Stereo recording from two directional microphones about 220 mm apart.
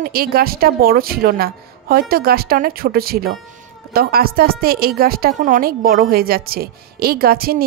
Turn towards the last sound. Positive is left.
turn(degrees=-45)  # may be behind; listen again after turning